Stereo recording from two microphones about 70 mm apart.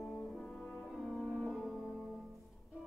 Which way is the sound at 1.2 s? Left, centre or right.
Centre.